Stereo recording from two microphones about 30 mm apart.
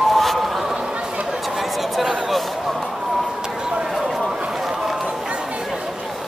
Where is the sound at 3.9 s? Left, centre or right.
Centre.